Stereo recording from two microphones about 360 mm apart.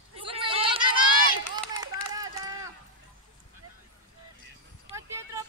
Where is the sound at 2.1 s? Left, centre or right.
Centre.